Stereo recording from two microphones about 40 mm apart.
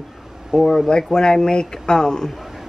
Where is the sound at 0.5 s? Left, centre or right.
Centre.